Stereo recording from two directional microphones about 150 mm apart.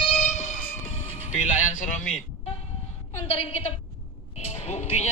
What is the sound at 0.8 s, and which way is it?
Music, 50° left (ahead or behind).